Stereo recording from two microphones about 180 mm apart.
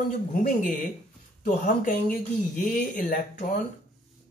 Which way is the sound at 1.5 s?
45° left (ahead or behind).